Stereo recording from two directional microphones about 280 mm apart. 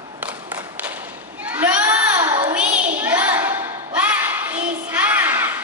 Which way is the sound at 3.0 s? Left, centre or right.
Centre.